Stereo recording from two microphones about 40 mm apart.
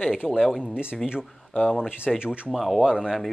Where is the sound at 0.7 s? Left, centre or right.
Right.